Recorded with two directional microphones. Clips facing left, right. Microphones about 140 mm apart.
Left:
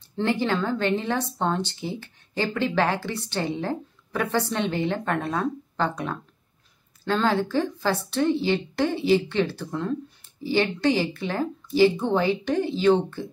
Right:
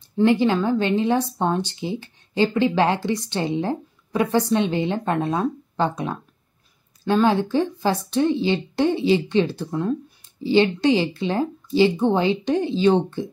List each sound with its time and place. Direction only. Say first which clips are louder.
0.2 s speech: right 6 dB; 15° right (ahead or behind)